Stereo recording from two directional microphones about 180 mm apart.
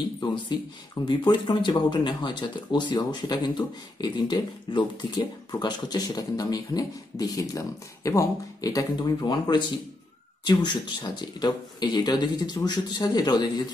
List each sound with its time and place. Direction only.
0.2 s speech: 25° left (ahead or behind)